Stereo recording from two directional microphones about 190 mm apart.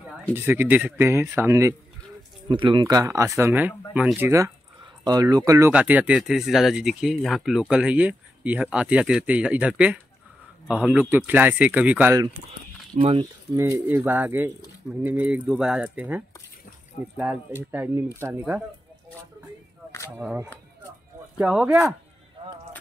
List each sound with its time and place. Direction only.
0.3 s speech: 10° right (ahead or behind)
2.4 s speech: 25° right (ahead or behind); by 12.2 s 10° right (ahead or behind)
12.9 s speech: 30° right (ahead or behind)
13.6 s speech: 15° right (ahead or behind)
17.6 s speech: 10° right (ahead or behind)
20.1 s speech: 5° right (ahead or behind)